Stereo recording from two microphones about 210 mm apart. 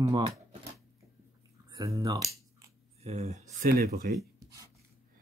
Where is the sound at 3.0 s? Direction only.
30° right (ahead or behind).